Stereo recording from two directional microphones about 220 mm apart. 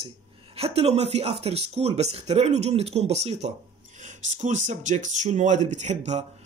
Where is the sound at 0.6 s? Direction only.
25° right (ahead or behind).